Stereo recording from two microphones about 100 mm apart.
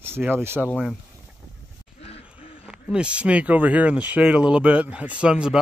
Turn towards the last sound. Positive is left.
turn(degrees=-10)  # may be behind; listen again after turning